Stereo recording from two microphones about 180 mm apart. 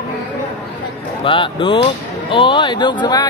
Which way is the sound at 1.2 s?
30° left (ahead or behind).